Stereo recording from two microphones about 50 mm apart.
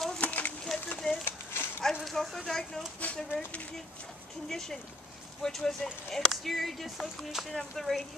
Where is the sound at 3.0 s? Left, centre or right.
Left.